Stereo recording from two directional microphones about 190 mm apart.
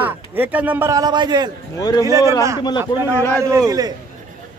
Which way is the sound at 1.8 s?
20° left (ahead or behind).